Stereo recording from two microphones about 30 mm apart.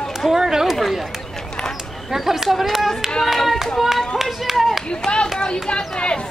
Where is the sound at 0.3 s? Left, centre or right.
Centre.